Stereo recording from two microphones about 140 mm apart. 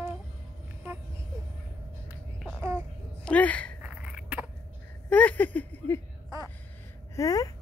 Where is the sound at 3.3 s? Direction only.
10° left (ahead or behind).